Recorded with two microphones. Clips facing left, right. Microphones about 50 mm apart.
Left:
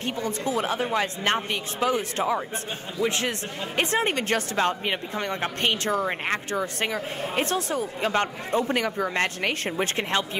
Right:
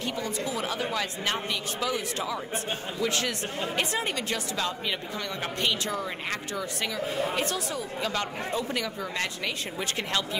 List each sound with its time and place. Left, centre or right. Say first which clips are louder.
0.0 s speech: left 3 dB; left